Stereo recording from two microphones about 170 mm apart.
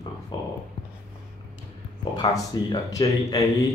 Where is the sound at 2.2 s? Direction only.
25° left (ahead or behind).